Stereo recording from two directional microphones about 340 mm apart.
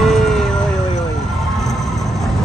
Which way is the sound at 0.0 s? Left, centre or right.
Centre.